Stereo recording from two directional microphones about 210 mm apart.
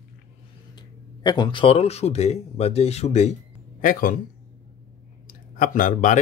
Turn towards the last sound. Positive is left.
turn(degrees=35)  # may be behind; listen again after turning